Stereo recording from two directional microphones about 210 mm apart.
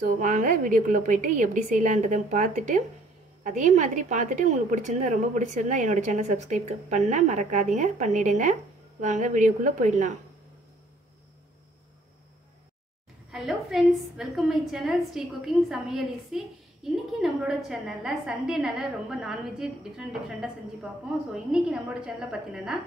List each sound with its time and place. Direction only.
0.2 s a woman's voice: 40° right (ahead or behind)
13.3 s a woman's voice: centre (ahead or behind)